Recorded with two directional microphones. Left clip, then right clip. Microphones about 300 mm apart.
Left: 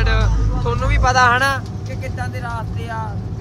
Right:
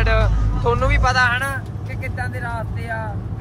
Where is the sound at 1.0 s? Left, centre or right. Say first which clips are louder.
Left 7 dB; left.